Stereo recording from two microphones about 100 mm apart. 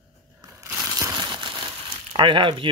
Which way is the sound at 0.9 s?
35° right (ahead or behind).